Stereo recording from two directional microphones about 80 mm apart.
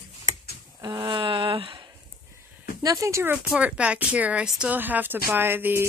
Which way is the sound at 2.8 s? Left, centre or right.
Right.